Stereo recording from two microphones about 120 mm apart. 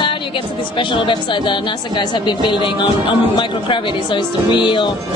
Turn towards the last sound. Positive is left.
turn(degrees=40)  # may be behind; listen again after turning